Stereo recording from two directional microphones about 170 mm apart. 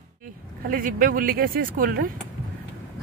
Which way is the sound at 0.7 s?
55° right (ahead or behind).